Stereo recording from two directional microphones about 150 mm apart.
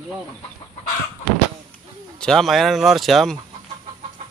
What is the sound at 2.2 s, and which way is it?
Speech, 5° left (ahead or behind).